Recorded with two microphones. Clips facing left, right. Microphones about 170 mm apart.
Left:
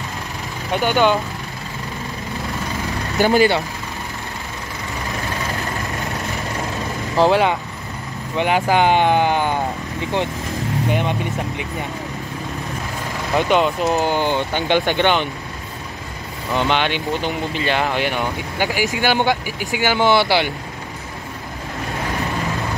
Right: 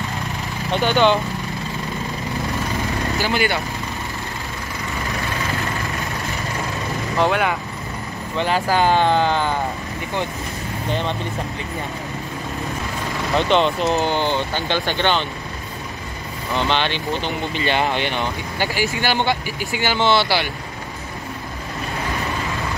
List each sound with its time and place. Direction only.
0.7 s speech: 15° left (ahead or behind)
3.2 s speech: 40° left (ahead or behind)
7.2 s speech: 30° left (ahead or behind)
8.4 s speech: 15° left (ahead or behind)
10.9 s speech: 15° left (ahead or behind)
13.3 s speech: 10° left (ahead or behind)
16.5 s speech: 10° left (ahead or behind)